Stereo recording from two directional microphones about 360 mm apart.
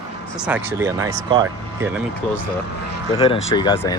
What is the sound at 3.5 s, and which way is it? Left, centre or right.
Speech, centre.